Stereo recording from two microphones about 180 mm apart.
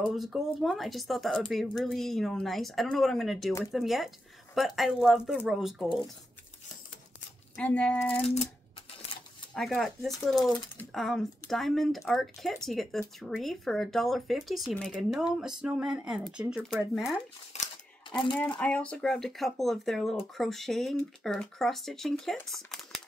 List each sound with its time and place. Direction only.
0.1 s speech: centre (ahead or behind)
7.5 s speech: 5° left (ahead or behind)
9.5 s speech: centre (ahead or behind)
17.5 s camera: 40° left (ahead or behind)
18.6 s speech: 5° left (ahead or behind)